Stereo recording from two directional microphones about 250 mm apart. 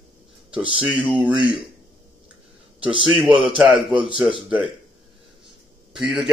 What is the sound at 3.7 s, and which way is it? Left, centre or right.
Speech, right.